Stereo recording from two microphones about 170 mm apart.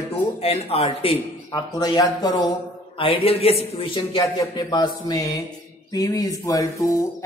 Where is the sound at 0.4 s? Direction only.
35° left (ahead or behind).